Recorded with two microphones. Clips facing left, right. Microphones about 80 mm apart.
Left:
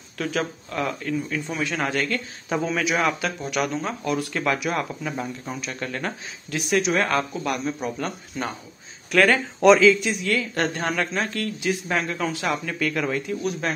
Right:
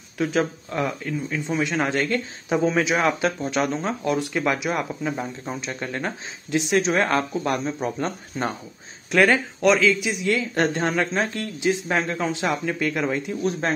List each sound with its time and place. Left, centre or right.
0.2 s speech: right
9.1 s speech: centre
9.6 s a man's voice: centre
10.2 s speech: right